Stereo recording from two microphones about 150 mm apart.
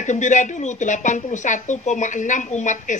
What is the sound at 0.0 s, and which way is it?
Speech, 55° left (ahead or behind).